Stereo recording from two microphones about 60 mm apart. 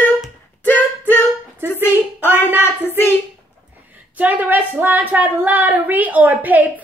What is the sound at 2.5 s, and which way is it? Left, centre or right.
Child singing, right.